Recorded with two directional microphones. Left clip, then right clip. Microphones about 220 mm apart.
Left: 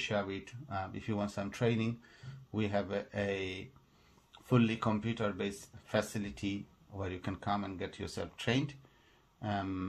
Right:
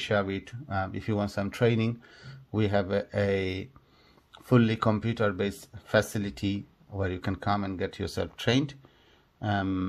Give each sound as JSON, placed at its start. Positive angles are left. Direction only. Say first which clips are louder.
{"t": 0.0, "sound": "speech", "louder": "right 7 dB", "side_deg": -35}